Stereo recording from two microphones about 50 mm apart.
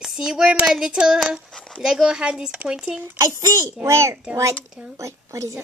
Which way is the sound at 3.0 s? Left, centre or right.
Right.